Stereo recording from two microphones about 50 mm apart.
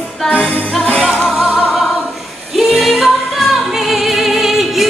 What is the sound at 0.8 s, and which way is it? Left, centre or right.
Music, left.